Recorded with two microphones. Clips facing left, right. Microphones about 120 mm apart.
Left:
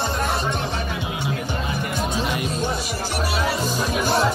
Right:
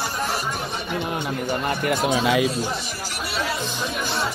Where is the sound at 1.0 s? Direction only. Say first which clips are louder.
Right 1 dB; 55° right (ahead or behind).